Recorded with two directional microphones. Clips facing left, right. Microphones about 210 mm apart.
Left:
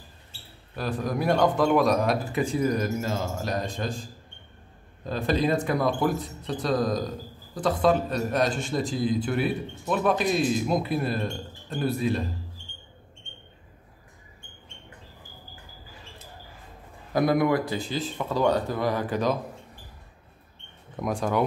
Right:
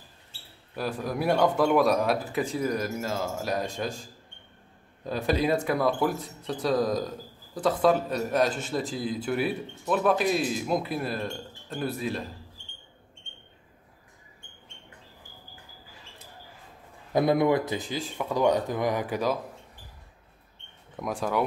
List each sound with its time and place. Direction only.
0.7 s speech: 10° right (ahead or behind)
5.0 s speech: 10° right (ahead or behind)
17.1 s speech: 25° right (ahead or behind)
20.9 s speech: 5° right (ahead or behind)